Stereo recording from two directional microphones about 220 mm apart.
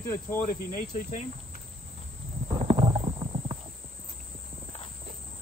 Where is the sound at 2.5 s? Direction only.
25° right (ahead or behind).